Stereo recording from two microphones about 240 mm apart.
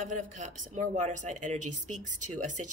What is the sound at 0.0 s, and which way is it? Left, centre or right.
Speech, right.